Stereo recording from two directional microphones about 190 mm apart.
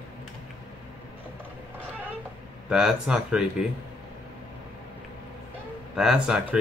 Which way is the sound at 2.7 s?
5° right (ahead or behind).